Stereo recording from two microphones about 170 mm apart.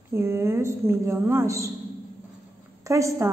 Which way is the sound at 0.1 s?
15° right (ahead or behind).